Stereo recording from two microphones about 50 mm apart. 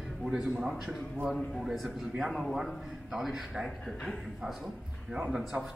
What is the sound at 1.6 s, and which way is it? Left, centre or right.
A man's voice, centre.